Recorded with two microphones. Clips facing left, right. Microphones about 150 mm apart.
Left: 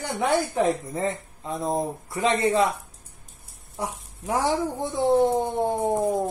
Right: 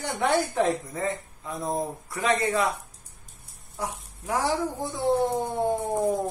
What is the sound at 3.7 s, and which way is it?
Speech, 25° left (ahead or behind).